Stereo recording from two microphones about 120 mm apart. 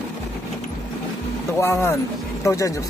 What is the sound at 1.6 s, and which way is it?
Speech, 20° left (ahead or behind).